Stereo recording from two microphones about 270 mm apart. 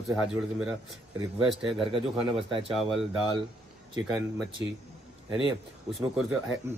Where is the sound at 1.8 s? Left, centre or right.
Centre.